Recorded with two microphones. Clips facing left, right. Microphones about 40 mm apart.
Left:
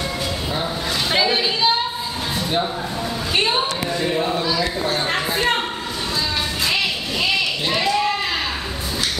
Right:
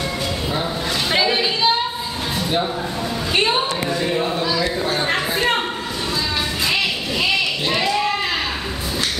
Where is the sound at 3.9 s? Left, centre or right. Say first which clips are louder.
Left 1 dB; centre.